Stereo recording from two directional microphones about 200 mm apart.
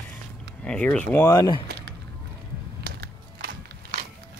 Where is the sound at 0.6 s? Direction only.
5° left (ahead or behind).